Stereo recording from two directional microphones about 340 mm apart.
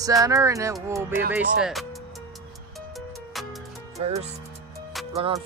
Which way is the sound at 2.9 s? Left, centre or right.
Centre.